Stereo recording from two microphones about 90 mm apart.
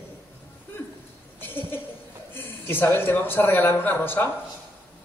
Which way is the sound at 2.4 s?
25° left (ahead or behind).